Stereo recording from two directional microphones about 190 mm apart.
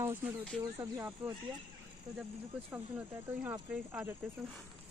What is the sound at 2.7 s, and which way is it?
Speech, 10° right (ahead or behind).